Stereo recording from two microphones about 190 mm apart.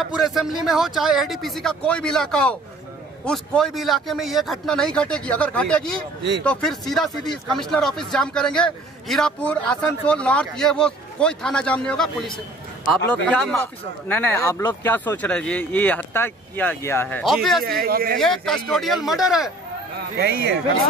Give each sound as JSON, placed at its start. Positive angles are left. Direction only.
{"t": 0.0, "sound": "speech", "side_deg": 0}
{"t": 14.0, "sound": "speech", "side_deg": 10}
{"t": 14.9, "sound": "speech", "side_deg": 10}
{"t": 17.2, "sound": "speech", "side_deg": 0}
{"t": 17.6, "sound": "speech", "side_deg": -55}
{"t": 18.2, "sound": "speech", "side_deg": 0}
{"t": 20.2, "sound": "a man's voice", "side_deg": -60}